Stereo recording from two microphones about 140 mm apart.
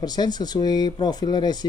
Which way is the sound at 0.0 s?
30° left (ahead or behind).